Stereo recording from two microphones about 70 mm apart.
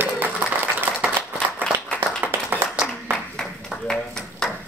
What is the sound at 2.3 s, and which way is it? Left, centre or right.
Clapping, right.